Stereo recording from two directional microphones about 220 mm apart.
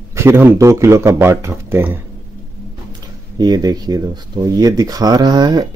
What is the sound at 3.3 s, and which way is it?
Speech, 15° right (ahead or behind).